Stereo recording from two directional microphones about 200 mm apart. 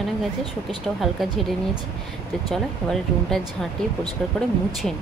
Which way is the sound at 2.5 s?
Centre (ahead or behind).